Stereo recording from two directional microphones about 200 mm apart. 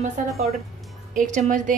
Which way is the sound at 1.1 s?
40° right (ahead or behind).